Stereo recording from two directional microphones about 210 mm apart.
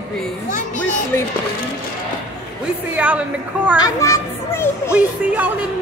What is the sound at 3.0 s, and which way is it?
Speech, 5° right (ahead or behind).